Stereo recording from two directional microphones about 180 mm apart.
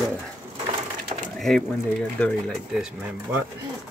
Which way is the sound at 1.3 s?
Centre (ahead or behind).